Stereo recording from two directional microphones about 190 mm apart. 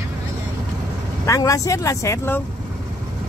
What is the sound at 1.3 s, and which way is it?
Speech, 15° left (ahead or behind).